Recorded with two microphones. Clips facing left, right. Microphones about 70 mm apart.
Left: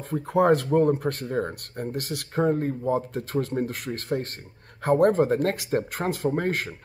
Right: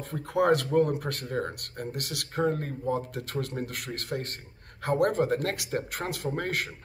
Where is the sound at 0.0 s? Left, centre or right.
Left.